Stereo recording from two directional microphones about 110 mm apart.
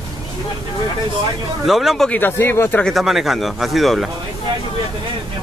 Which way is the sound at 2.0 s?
15° left (ahead or behind).